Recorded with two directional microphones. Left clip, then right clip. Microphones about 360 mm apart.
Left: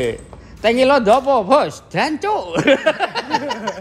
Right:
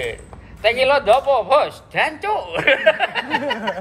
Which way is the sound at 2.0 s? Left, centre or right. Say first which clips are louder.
Left 2 dB; centre.